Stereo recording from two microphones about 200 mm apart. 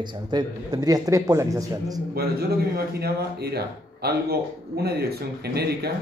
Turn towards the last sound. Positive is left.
turn(degrees=-55)  # may be behind; listen again after turning